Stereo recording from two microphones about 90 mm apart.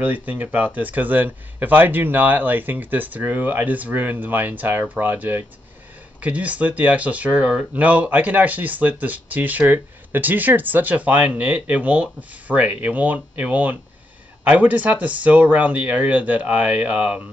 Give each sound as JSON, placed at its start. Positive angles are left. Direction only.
{"t": 0.0, "sound": "a man's voice", "side_deg": -20}